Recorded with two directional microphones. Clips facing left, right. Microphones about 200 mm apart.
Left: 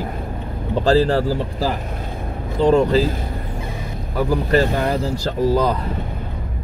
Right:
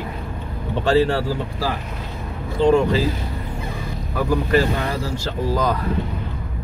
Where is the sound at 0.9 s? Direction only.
35° left (ahead or behind).